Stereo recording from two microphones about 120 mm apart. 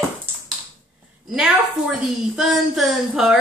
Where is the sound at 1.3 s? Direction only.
5° right (ahead or behind).